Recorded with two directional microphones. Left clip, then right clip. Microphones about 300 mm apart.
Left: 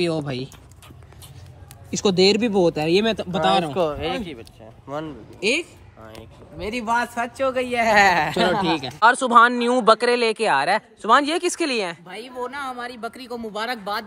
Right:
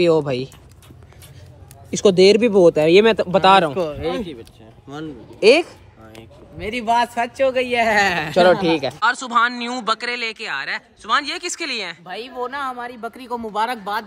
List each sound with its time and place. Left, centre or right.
0.0 s speech: centre
1.9 s speech: centre
6.6 s speech: centre
7.2 s a man's voice: right
7.8 s speech: centre
12.1 s speech: centre